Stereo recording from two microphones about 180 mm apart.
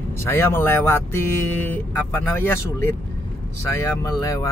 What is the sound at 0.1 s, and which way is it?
Speech, 15° left (ahead or behind).